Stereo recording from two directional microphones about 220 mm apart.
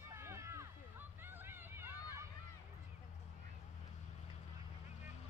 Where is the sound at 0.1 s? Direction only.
10° right (ahead or behind).